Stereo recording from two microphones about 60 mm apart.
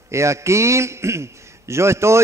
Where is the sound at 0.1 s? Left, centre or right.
Right.